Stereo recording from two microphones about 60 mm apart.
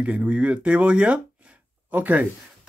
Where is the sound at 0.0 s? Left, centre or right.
Centre.